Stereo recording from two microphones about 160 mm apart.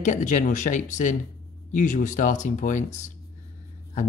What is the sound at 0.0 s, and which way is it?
Speech, 50° left (ahead or behind).